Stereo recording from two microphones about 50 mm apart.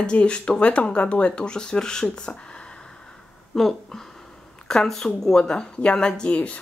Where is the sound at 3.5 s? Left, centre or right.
Centre; by 6.6 s left.